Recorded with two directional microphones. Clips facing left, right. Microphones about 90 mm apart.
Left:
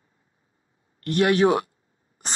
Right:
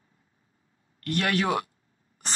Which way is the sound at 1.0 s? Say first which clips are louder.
Left 7 dB; 20° left (ahead or behind).